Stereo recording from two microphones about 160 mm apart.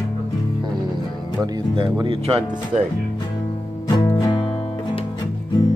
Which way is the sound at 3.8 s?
20° left (ahead or behind).